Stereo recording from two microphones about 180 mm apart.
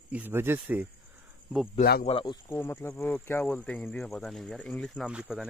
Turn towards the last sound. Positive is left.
turn(degrees=-5)  # may be behind; listen again after turning